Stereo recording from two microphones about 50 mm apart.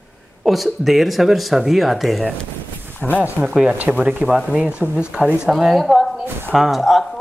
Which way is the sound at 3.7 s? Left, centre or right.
Right.